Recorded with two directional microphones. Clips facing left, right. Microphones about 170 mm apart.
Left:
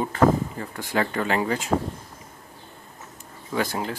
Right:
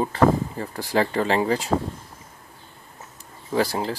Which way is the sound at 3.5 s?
35° right (ahead or behind).